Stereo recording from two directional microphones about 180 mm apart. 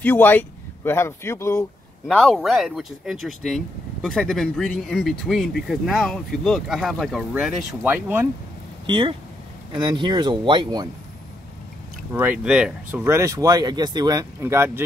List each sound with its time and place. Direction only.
0.0 s speech: 10° left (ahead or behind)
2.0 s speech: centre (ahead or behind)
8.8 s speech: 25° right (ahead or behind)
12.1 s speech: 10° right (ahead or behind)
13.0 s speech: 15° right (ahead or behind)